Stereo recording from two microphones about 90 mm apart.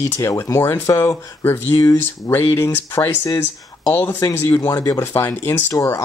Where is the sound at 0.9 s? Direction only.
35° left (ahead or behind).